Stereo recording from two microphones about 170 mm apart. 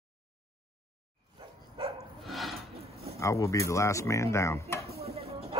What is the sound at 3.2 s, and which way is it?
Speech, 20° left (ahead or behind).